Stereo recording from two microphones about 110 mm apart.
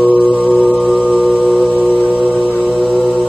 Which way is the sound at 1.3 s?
10° left (ahead or behind).